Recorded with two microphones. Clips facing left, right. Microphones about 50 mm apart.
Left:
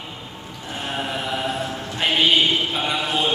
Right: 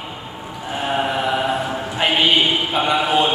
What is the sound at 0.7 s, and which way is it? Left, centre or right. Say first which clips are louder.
Chant: right 6 dB; centre.